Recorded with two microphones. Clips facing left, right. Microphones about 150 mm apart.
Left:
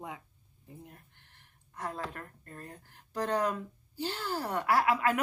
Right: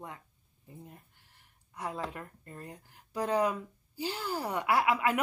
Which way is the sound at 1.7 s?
10° right (ahead or behind).